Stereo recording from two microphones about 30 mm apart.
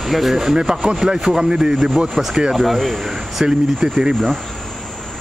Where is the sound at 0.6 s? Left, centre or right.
Right.